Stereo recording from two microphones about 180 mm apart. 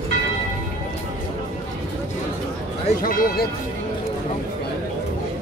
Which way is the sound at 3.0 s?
50° left (ahead or behind).